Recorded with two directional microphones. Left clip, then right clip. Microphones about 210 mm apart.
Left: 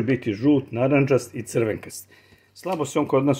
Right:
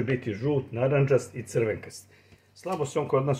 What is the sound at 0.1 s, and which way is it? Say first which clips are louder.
Speech: left 9 dB; 40° left (ahead or behind).